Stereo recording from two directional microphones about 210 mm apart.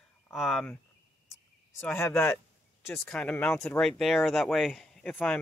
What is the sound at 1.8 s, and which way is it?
Speech, 10° left (ahead or behind).